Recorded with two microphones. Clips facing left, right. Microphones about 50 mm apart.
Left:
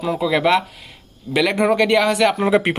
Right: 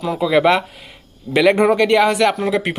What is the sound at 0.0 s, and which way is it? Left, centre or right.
Speech, centre.